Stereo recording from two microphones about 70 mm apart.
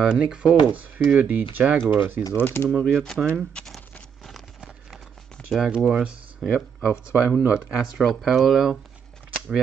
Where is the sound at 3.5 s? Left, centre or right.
Centre.